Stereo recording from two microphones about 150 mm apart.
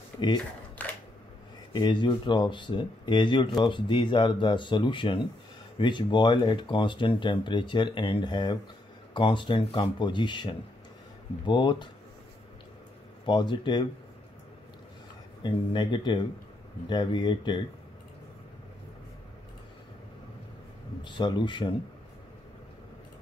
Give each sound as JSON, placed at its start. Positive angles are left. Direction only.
{"t": 0.8, "sound": "a sound", "side_deg": 10}
{"t": 1.7, "sound": "speech", "side_deg": 30}
{"t": 13.2, "sound": "speech", "side_deg": 30}
{"t": 15.4, "sound": "speech", "side_deg": 30}
{"t": 21.0, "sound": "speech", "side_deg": 30}